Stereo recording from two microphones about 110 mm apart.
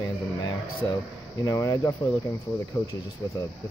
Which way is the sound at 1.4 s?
30° left (ahead or behind).